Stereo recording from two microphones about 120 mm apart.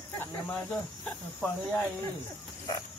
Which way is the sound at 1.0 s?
10° left (ahead or behind).